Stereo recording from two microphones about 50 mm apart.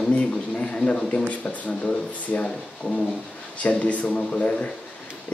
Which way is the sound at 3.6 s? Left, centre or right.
Left.